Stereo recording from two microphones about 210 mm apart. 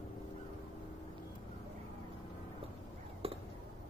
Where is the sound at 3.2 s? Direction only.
25° right (ahead or behind).